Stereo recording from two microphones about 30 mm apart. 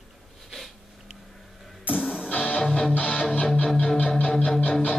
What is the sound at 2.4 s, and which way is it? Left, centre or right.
Music, left.